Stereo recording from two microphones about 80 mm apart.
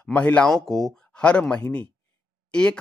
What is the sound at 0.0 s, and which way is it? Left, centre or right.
Speech, centre.